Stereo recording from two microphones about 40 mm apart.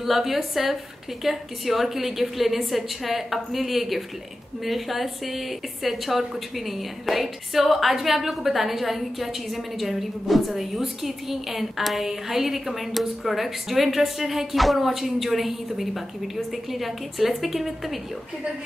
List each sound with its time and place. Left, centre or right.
0.0 s a woman's voice: centre